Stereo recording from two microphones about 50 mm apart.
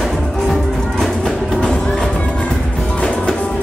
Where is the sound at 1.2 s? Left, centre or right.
Centre.